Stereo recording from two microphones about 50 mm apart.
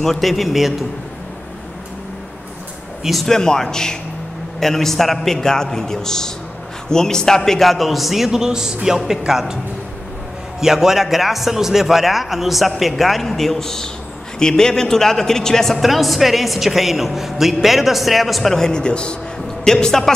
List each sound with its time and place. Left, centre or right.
0.0 s a woman's voice: centre
3.0 s speech: centre
3.3 s a man's voice: centre
10.6 s a woman's voice: centre